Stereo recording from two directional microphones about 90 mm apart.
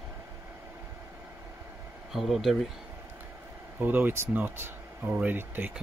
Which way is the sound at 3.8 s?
20° right (ahead or behind).